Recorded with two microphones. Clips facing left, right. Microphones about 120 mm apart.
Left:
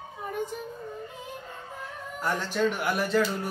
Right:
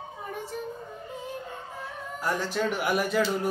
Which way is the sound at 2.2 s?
10° right (ahead or behind).